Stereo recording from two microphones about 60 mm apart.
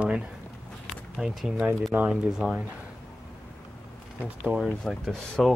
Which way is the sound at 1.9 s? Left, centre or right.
Right.